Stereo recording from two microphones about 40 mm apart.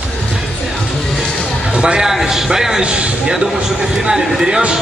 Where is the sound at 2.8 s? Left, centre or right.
Right.